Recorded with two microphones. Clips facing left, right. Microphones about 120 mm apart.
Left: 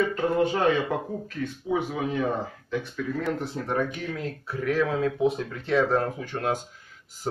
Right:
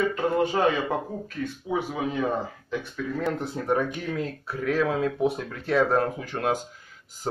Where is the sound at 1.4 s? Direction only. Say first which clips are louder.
Left 1 dB; 5° right (ahead or behind).